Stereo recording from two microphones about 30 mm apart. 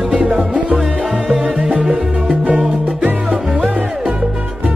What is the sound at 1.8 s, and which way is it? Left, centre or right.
Music, right.